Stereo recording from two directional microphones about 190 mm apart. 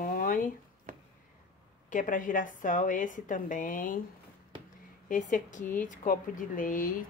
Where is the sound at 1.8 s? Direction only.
40° left (ahead or behind).